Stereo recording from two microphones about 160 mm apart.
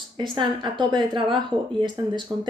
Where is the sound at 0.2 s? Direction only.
30° right (ahead or behind).